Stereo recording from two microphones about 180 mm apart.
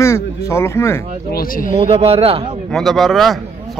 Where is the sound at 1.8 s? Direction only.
35° right (ahead or behind).